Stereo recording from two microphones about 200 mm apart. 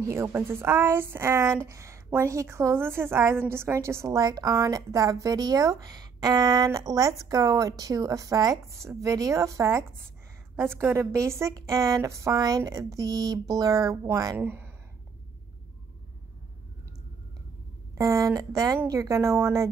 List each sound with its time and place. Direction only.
0.0 s a woman's voice: 15° right (ahead or behind)
17.9 s a woman's voice: 15° right (ahead or behind)